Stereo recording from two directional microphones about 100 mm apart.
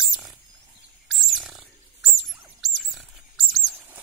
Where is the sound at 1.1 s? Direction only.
Centre (ahead or behind).